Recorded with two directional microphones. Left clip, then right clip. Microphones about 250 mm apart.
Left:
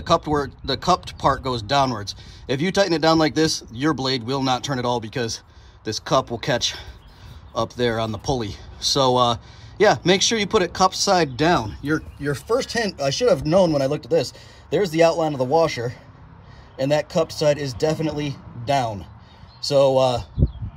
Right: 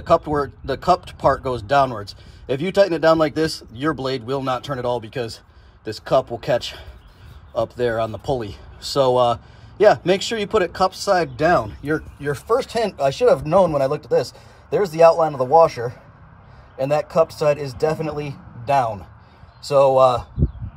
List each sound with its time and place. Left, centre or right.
0.0 s speech: centre